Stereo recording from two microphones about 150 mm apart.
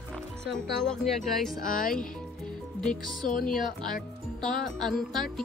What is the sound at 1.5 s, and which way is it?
Speech, 65° left (ahead or behind).